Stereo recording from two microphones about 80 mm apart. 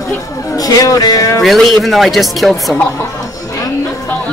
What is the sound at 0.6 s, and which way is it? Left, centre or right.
Speech, left.